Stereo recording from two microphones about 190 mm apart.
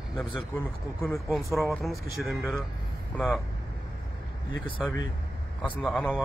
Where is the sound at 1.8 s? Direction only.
Centre (ahead or behind).